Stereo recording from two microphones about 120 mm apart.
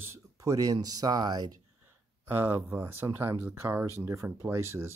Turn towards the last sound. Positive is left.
turn(degrees=-20)  # may be behind; listen again after turning